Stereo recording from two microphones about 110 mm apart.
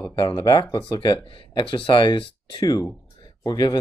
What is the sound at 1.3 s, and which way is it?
Speech, 50° left (ahead or behind).